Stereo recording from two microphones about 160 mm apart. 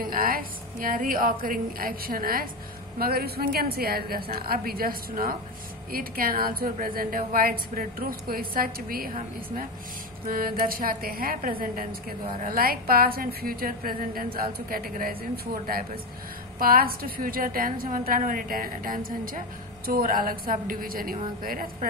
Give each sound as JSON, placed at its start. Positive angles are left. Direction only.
{"t": 0.0, "sound": "a woman's voice", "side_deg": -65}